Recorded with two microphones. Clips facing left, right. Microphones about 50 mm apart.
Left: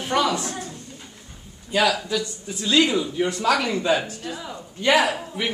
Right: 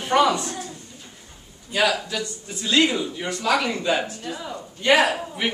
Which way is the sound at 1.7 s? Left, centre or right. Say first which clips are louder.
Left 1 dB; centre.